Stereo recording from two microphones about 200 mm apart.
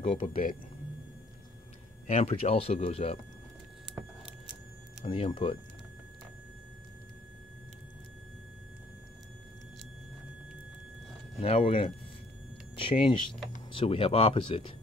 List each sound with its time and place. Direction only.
0.0 s speech: 30° left (ahead or behind)
2.0 s speech: 30° left (ahead or behind)
5.0 s speech: 25° left (ahead or behind)
11.4 s speech: 30° left (ahead or behind)